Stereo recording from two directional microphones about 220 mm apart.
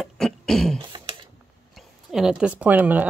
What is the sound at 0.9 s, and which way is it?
Typing, 25° right (ahead or behind).